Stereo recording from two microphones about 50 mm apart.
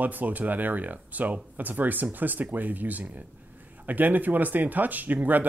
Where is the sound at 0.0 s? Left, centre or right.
Right.